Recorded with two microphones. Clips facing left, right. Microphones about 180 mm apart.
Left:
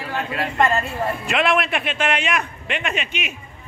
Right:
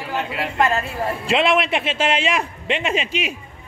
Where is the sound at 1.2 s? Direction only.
25° right (ahead or behind).